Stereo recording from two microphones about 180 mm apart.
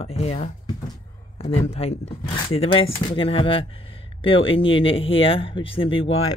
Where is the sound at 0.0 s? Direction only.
35° left (ahead or behind).